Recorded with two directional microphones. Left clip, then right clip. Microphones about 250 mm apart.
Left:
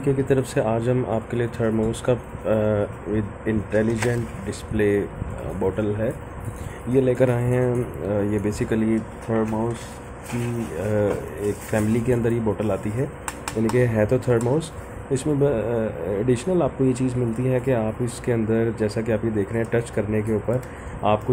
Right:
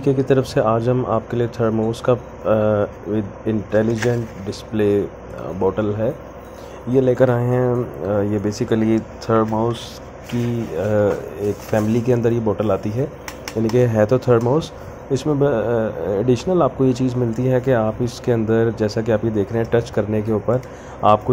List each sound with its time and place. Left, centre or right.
0.0 s speech: centre
9.4 s speech: right
10.8 s speech: centre